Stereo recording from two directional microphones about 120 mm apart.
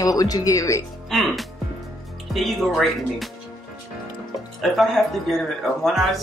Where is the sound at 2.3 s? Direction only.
Centre (ahead or behind).